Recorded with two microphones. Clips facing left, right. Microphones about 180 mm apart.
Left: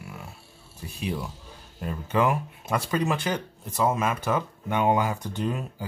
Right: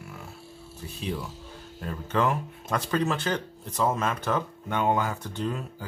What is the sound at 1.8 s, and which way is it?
Speech, 10° left (ahead or behind).